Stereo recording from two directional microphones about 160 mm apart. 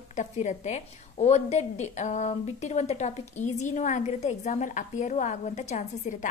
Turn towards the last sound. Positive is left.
turn(degrees=50)  # may be behind; listen again after turning